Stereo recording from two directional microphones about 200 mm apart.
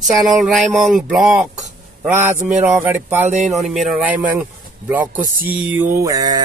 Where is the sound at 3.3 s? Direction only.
35° right (ahead or behind).